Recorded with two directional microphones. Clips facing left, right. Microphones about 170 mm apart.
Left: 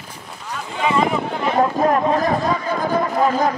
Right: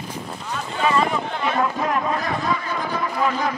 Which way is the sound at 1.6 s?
40° left (ahead or behind).